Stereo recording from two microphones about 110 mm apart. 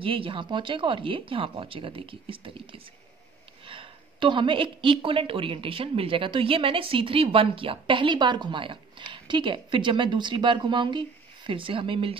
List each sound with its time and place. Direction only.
0.0 s a woman's voice: 55° right (ahead or behind)